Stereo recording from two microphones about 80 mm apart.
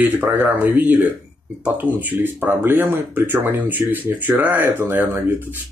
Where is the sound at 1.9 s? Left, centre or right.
Right.